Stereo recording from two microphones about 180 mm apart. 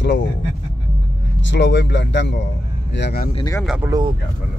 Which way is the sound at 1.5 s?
80° left.